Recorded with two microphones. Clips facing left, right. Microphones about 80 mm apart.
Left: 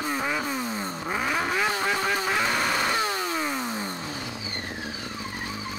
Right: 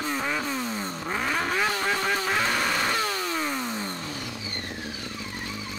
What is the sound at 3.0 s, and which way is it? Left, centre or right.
Vehicle, centre.